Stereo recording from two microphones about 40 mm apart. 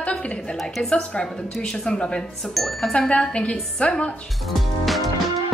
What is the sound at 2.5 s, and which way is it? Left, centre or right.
Speech, centre.